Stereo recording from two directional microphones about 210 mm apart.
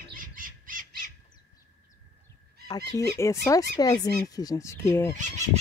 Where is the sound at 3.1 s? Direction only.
15° left (ahead or behind).